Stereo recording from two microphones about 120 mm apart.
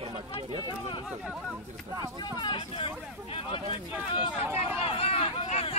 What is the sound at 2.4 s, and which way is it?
Speech, 45° left (ahead or behind).